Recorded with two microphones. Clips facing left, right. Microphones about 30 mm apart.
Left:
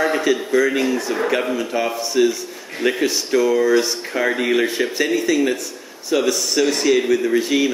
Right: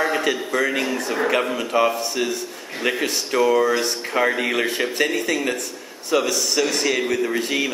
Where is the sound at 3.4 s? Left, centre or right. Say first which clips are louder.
Left 1 dB; right.